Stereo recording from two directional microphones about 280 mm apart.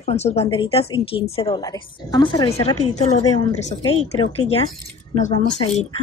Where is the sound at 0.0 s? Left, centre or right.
Left.